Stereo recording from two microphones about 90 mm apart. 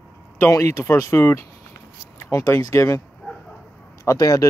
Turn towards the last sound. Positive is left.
turn(degrees=40)  # may be behind; listen again after turning